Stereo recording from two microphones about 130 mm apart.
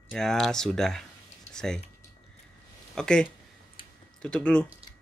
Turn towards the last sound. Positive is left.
turn(degrees=-45)  # may be behind; listen again after turning